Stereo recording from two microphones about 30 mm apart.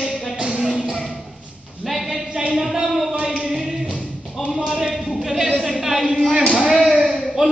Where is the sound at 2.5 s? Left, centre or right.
Centre.